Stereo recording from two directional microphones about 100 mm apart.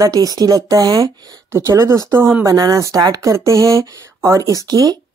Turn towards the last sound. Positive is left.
turn(degrees=-40)  # may be behind; listen again after turning